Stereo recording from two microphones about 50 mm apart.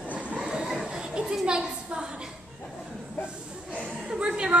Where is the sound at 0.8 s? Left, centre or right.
Centre.